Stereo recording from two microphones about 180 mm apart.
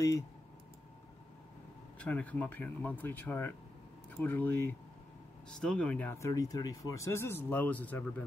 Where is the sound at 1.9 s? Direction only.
10° left (ahead or behind).